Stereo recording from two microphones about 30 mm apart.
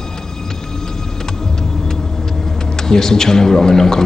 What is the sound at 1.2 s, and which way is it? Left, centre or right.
Music, left.